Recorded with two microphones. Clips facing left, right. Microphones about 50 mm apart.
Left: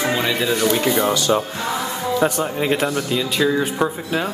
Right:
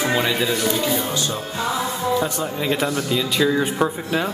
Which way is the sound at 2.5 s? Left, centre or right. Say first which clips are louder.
Left 2 dB; left.